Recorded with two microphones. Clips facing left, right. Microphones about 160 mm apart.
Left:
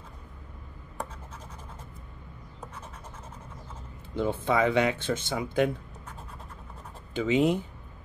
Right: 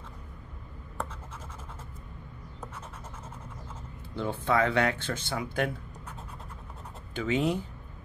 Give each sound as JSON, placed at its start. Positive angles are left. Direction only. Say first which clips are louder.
{"t": 4.1, "sound": "speech", "louder": "left 2 dB", "side_deg": 20}
{"t": 7.2, "sound": "speech", "louder": "left 4 dB", "side_deg": 20}